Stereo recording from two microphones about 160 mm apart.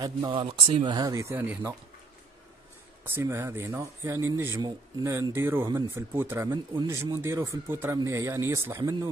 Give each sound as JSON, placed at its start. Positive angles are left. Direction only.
{"t": 0.0, "sound": "speech", "side_deg": -25}
{"t": 0.9, "sound": "speech", "side_deg": -20}
{"t": 3.0, "sound": "speech", "side_deg": -15}